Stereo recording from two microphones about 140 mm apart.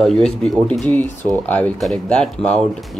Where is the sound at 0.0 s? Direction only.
5° left (ahead or behind).